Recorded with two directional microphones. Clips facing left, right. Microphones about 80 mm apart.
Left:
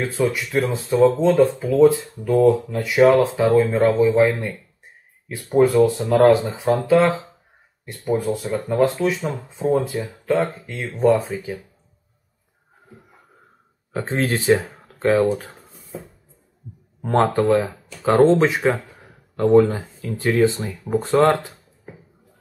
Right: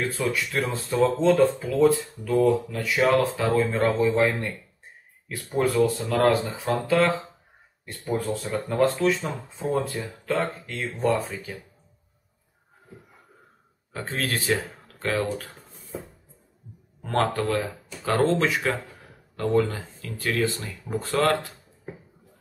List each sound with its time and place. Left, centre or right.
0.0 s speech: left
13.9 s speech: left
17.0 s speech: left